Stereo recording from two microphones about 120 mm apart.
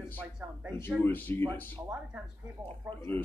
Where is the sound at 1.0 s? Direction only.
15° left (ahead or behind).